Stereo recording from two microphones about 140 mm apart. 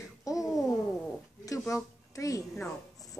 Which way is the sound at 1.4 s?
25° left (ahead or behind).